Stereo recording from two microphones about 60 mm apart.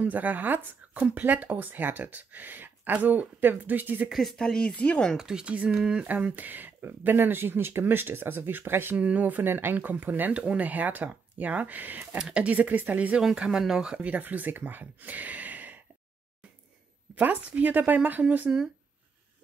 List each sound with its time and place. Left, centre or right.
0.0 s speech: right
4.1 s speech: centre
4.4 s speech: centre
5.1 s speech: centre; by 8.9 s right
8.9 s speech: right
12.2 s speech: centre
13.2 s speech: centre
14.0 s speech: right
17.1 s speech: right